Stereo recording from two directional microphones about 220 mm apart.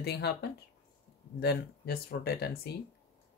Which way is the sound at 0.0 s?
50° left (ahead or behind).